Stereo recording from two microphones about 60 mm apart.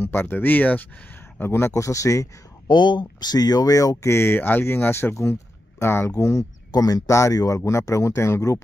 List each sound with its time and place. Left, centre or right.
0.0 s speech: left
1.4 s speech: left
1.7 s speech: left
3.3 s speech: left
5.1 s speech: left
6.1 s speech: left